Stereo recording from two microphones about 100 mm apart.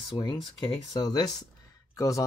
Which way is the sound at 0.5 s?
45° left (ahead or behind).